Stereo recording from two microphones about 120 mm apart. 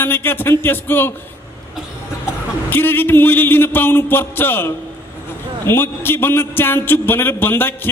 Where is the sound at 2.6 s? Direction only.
15° left (ahead or behind).